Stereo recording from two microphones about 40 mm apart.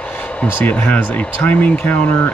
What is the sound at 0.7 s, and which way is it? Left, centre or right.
Speech, left.